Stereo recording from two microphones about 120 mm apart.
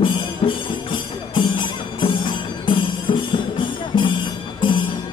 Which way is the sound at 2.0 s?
40° left (ahead or behind).